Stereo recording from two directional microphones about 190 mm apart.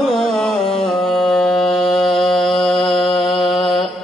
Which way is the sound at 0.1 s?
Centre (ahead or behind).